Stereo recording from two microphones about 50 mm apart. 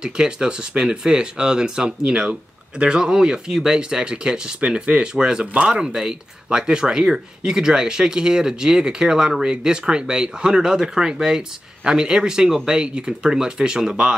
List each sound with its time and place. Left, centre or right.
0.0 s speech: centre